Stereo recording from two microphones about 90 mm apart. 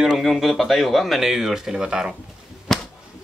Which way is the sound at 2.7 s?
Centre (ahead or behind).